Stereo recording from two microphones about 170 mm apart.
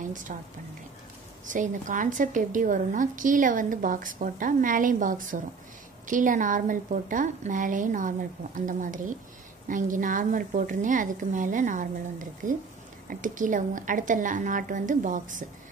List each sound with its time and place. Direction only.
0.1 s a woman's voice: 50° right (ahead or behind)
1.4 s a woman's voice: 50° right (ahead or behind)